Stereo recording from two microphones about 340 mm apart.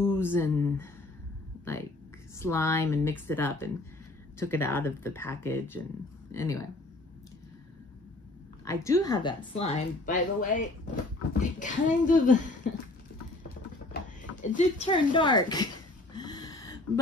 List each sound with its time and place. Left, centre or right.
0.0 s speech: centre
8.6 s speech: centre
11.6 s speech: left
14.4 s a sound: left